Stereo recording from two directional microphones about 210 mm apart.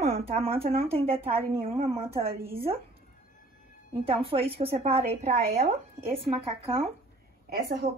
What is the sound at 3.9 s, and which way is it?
A woman's voice, 25° right (ahead or behind).